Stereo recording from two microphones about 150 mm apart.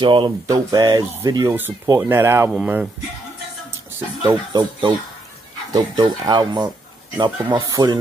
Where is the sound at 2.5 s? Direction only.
5° right (ahead or behind).